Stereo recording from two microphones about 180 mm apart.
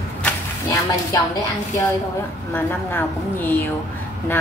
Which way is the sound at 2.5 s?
10° left (ahead or behind).